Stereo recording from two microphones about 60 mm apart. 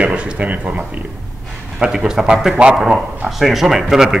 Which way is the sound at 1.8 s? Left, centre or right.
Centre.